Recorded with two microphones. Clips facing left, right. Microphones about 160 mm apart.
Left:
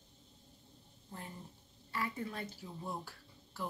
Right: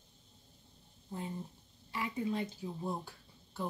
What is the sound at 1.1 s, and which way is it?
Speech, 20° right (ahead or behind).